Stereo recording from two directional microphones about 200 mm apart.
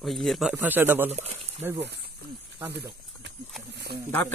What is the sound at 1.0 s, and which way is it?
Speech, 30° right (ahead or behind).